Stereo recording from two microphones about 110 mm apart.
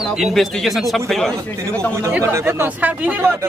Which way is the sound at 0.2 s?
Centre (ahead or behind).